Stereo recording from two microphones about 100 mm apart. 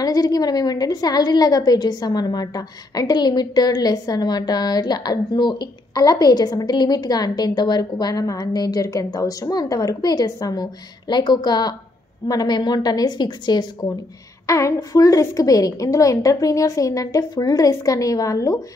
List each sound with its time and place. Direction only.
0.0 s a woman's voice: 40° left (ahead or behind)
14.4 s a woman's voice: 30° left (ahead or behind)